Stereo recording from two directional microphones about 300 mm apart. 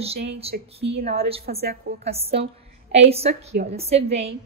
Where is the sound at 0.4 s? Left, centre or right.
Centre.